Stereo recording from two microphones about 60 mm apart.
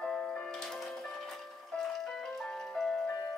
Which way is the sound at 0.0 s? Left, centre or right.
Centre.